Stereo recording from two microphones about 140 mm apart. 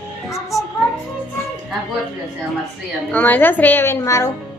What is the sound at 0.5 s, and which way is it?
Music, 25° left (ahead or behind).